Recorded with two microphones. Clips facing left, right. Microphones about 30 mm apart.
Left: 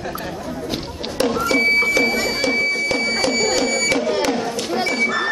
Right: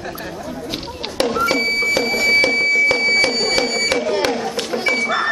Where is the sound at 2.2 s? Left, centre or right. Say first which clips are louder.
Right 5 dB; right.